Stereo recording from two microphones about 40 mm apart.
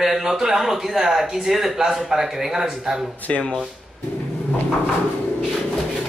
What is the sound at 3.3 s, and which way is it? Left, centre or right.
Speech, left.